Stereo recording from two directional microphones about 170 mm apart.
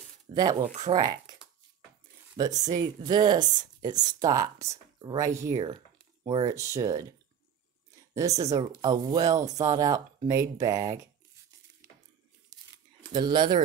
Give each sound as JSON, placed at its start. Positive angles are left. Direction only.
{"t": 0.3, "sound": "speech", "side_deg": -25}
{"t": 2.3, "sound": "speech", "side_deg": -20}
{"t": 13.0, "sound": "speech", "side_deg": -25}